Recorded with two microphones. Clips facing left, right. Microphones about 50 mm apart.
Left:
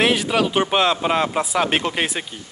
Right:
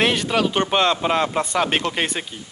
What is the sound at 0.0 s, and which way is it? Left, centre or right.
Speech, centre.